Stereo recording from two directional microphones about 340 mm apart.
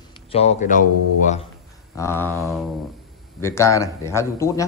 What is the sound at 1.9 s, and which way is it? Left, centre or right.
Speech, centre.